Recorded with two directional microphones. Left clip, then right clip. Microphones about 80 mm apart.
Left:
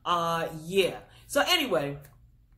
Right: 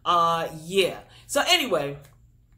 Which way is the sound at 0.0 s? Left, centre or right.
Centre.